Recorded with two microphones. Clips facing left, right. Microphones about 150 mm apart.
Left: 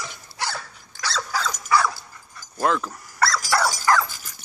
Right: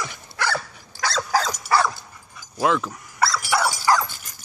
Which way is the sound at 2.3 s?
5° right (ahead or behind).